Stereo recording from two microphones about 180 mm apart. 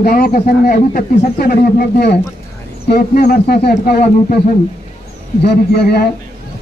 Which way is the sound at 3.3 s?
60° left (ahead or behind).